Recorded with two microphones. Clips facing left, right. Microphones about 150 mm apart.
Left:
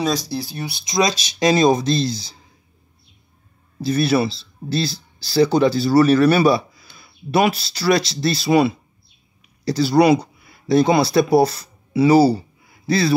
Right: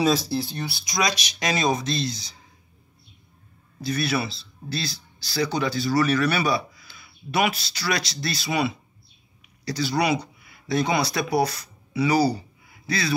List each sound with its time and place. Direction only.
0.0 s speech: centre (ahead or behind)
0.7 s speech: 20° left (ahead or behind)
3.8 s speech: 35° left (ahead or behind)